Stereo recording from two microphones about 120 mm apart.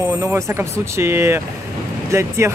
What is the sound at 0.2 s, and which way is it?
Speech, 25° right (ahead or behind).